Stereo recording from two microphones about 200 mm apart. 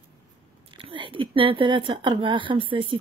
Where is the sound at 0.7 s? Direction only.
25° right (ahead or behind).